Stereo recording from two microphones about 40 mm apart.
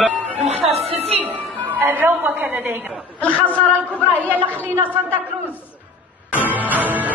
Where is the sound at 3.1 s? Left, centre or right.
Left.